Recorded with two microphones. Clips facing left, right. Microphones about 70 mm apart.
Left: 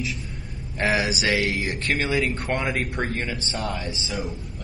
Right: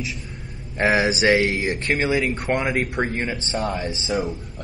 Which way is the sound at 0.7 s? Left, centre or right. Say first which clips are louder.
Right 4 dB; right.